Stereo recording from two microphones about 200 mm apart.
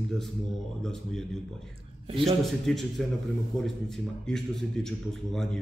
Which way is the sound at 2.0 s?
30° right (ahead or behind).